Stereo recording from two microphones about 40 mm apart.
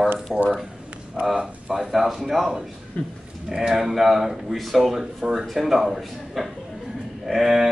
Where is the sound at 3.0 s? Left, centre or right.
Left.